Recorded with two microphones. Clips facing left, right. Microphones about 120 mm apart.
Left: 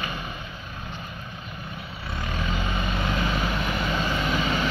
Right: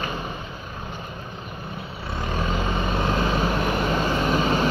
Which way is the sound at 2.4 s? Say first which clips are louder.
Right 4 dB; 35° right (ahead or behind).